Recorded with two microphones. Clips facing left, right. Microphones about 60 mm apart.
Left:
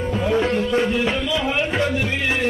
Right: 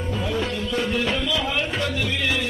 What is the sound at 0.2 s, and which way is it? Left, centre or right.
Music, left.